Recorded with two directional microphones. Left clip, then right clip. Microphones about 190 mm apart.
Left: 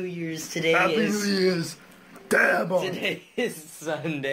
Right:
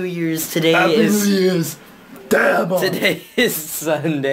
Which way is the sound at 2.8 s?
25° right (ahead or behind).